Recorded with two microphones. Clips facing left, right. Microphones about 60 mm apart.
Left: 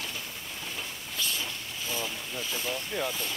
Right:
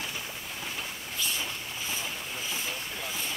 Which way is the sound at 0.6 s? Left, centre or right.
Centre.